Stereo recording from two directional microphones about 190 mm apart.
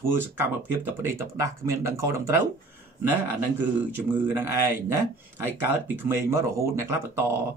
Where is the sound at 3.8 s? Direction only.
10° right (ahead or behind).